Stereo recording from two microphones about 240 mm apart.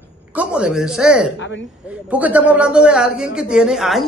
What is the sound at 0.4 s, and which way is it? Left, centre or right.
A man's voice, centre.